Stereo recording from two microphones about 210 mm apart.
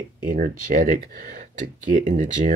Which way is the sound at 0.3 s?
45° right (ahead or behind).